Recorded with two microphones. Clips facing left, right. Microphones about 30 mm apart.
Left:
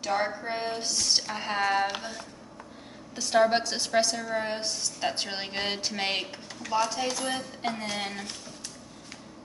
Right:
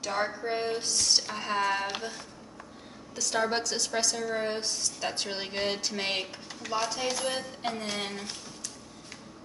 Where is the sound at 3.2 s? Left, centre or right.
Centre.